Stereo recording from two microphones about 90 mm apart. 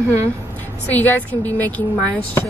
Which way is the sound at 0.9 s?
20° left (ahead or behind).